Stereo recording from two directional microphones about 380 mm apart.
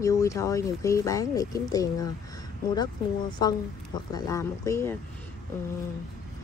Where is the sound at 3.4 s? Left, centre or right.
Centre.